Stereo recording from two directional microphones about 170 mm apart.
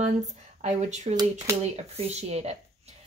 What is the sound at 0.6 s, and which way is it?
A woman's voice, 40° right (ahead or behind).